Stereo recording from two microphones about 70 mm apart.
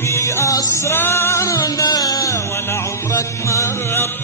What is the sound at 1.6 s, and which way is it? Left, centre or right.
Music, left.